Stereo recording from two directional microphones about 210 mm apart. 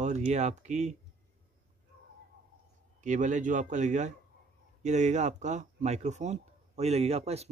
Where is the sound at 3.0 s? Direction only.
35° right (ahead or behind).